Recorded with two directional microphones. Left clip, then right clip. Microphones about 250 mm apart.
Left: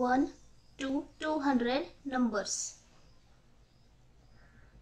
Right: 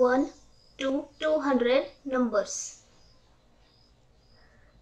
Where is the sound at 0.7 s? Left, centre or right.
Centre.